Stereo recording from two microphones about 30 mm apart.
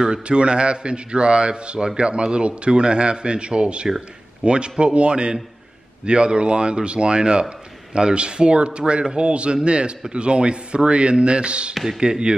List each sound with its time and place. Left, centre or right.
0.0 s speech: right
11.7 s speech: centre
12.0 s speech: right